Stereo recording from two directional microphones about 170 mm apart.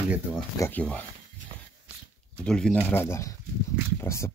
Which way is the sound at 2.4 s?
5° left (ahead or behind).